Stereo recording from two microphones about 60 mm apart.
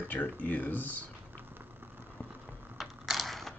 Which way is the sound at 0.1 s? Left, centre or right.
Left.